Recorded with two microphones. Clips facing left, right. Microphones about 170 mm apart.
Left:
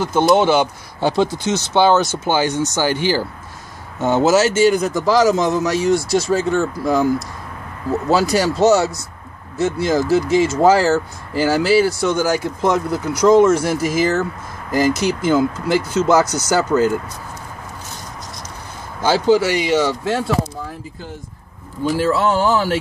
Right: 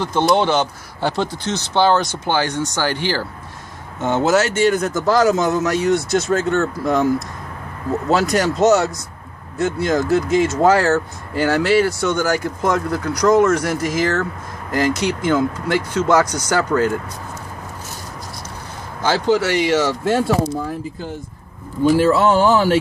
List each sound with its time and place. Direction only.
0.0 s a man's voice: 5° left (ahead or behind)
19.0 s speech: 10° left (ahead or behind)
22.0 s speech: 65° right (ahead or behind)